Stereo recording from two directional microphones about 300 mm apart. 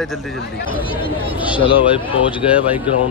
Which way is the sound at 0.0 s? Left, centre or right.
Centre.